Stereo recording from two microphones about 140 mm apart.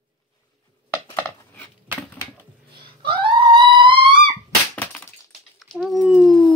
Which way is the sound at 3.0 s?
35° right (ahead or behind).